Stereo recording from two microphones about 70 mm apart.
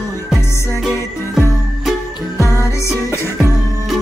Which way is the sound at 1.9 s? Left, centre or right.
Centre.